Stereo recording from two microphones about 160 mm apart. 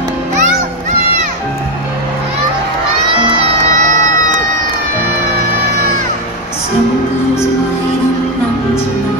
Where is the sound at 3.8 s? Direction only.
50° right (ahead or behind).